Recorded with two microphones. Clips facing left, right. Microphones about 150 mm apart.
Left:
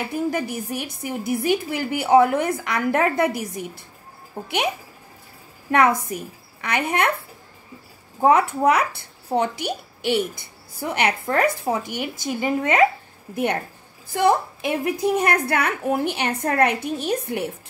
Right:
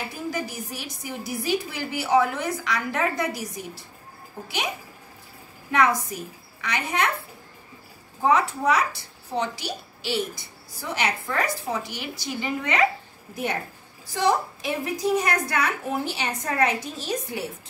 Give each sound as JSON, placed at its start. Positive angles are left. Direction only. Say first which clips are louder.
{"t": 0.1, "sound": "a woman's voice", "louder": "left 6 dB", "side_deg": 55}
{"t": 5.7, "sound": "a woman's voice", "louder": "left 4 dB", "side_deg": 55}
{"t": 8.2, "sound": "a woman's voice", "louder": "left 5 dB", "side_deg": 55}
{"t": 14.0, "sound": "a woman's voice", "louder": "left 4 dB", "side_deg": 55}